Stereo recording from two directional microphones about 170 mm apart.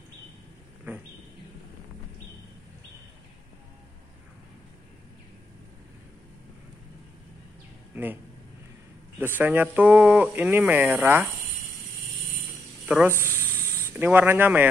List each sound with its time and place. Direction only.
7.9 s a sound: 10° right (ahead or behind)
9.2 s speech: 10° right (ahead or behind)
12.8 s speech: 10° right (ahead or behind)
13.5 s spray: 10° right (ahead or behind)